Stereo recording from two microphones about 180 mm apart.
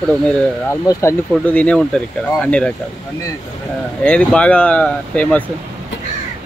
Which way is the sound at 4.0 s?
5° left (ahead or behind).